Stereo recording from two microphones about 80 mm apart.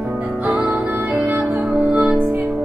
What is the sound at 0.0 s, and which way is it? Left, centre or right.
Music, centre.